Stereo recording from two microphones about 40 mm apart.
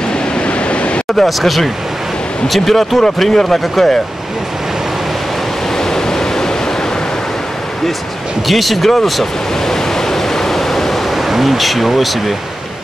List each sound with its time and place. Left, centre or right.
0.5 s waves: left
1.1 s speech: centre
5.8 s waves: centre
8.5 s waves: centre